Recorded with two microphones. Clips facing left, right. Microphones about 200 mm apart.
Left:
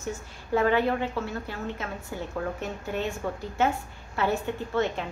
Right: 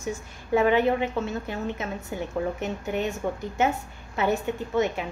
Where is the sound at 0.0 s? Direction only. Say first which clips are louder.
Right 2 dB; 15° right (ahead or behind).